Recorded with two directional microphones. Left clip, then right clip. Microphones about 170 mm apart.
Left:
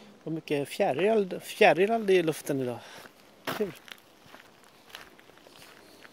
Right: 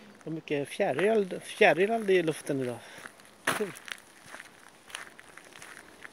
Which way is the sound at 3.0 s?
10° right (ahead or behind).